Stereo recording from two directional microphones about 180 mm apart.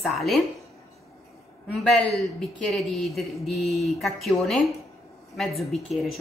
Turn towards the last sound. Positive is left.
turn(degrees=0)  # may be behind; listen again after turning